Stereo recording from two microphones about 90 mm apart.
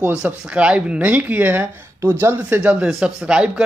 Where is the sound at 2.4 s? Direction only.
15° right (ahead or behind).